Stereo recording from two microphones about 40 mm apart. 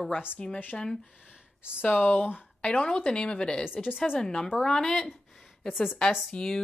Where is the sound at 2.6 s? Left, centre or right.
Left.